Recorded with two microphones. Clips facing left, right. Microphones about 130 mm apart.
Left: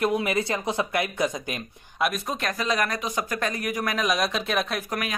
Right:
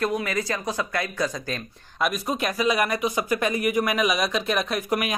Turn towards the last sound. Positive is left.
turn(degrees=-15)  # may be behind; listen again after turning